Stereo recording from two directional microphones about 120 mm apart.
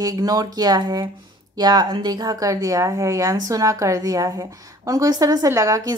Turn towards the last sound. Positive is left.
turn(degrees=-25)  # may be behind; listen again after turning